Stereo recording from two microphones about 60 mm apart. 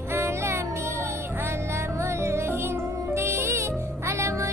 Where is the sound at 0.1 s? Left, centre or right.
Right.